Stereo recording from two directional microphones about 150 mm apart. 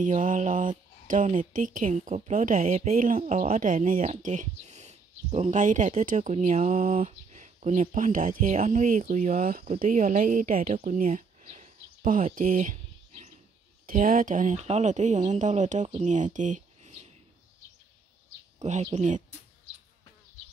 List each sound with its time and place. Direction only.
0.2 s speech: 60° right (ahead or behind)
12.4 s a sound: 65° right (ahead or behind)
13.8 s speech: 70° right (ahead or behind); by 17.1 s 50° right (ahead or behind)
18.6 s speech: 50° right (ahead or behind)